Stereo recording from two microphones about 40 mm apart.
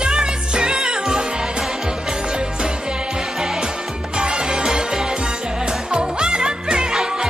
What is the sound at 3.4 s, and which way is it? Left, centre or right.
Music, centre.